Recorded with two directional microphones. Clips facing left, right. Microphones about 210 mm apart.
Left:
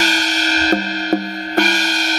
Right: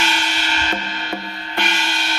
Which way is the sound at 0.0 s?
40° left (ahead or behind).